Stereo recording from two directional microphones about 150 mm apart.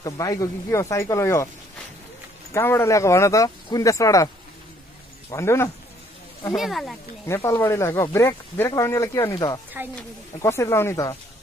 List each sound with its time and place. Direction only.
0.0 s speech: 25° left (ahead or behind)
2.5 s speech: 15° left (ahead or behind)
5.3 s speech: 15° left (ahead or behind)
6.5 s speech: centre (ahead or behind)
7.2 s speech: 15° left (ahead or behind)